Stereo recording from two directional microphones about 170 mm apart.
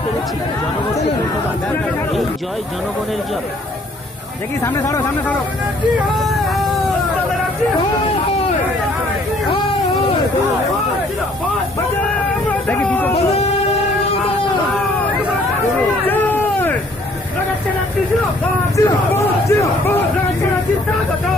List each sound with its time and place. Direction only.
4.6 s speech: 15° left (ahead or behind)
6.1 s music: centre (ahead or behind)
12.4 s a sound: 10° left (ahead or behind)
13.1 s speech: 40° left (ahead or behind)
16.1 s a sound: 10° left (ahead or behind)
18.8 s speech: 15° left (ahead or behind)